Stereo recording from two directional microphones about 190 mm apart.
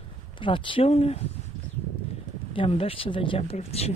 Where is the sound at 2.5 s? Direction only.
30° left (ahead or behind).